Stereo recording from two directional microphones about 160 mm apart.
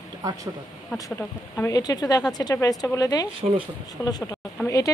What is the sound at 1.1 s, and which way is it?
Speech, 15° left (ahead or behind).